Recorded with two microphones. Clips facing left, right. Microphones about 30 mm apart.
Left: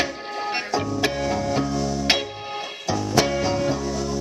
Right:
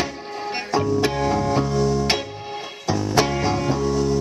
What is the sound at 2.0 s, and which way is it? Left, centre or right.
Music, centre.